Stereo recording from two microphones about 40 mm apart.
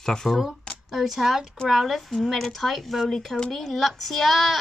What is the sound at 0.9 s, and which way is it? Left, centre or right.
Speech, centre.